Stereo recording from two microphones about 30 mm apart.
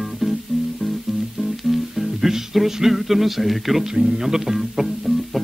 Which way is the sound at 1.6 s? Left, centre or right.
Centre.